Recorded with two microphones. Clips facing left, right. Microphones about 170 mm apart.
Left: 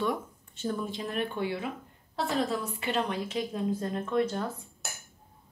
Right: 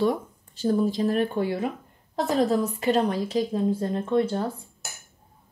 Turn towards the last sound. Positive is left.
turn(degrees=-30)  # may be behind; listen again after turning